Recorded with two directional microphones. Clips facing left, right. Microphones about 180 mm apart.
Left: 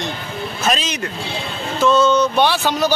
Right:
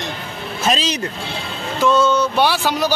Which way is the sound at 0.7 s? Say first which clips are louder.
Right 2 dB; 30° right (ahead or behind).